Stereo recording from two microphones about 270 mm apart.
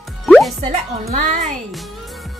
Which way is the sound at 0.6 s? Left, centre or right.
Right.